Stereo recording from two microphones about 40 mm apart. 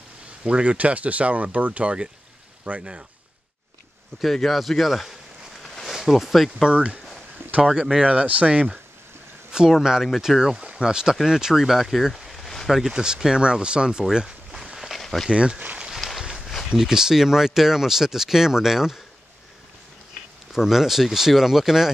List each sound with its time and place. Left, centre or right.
0.4 s speech: right
4.2 s speech: centre
5.6 s a sound: centre
5.9 s speech: centre
6.7 s speech: right
7.7 s speech: centre
8.0 s speech: right
9.5 s speech: centre
12.9 s speech: centre
14.8 s a sound: centre
15.3 s speech: right
15.9 s a sound: centre
16.7 s speech: centre
20.5 s speech: centre